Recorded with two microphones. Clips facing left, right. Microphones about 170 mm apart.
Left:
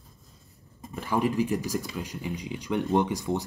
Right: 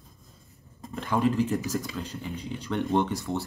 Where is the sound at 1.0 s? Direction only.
10° left (ahead or behind).